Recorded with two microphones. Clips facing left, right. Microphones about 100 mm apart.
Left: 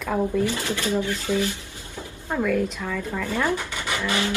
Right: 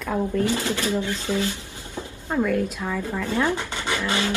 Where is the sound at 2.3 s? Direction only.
Centre (ahead or behind).